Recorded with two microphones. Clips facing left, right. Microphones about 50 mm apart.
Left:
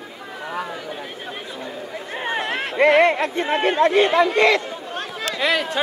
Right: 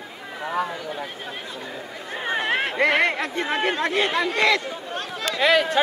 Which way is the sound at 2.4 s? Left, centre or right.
Right.